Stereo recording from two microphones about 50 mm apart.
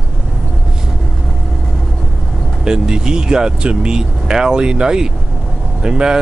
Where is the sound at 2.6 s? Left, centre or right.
Centre.